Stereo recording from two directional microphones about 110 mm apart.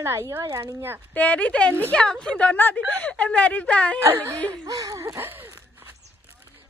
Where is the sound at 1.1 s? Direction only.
15° left (ahead or behind).